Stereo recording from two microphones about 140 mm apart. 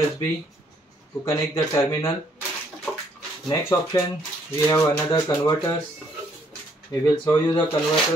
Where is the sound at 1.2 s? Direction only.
20° left (ahead or behind).